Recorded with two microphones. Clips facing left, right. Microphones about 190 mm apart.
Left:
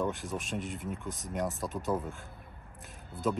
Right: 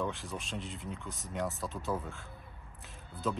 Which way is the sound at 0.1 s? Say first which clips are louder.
Left 4 dB; centre (ahead or behind).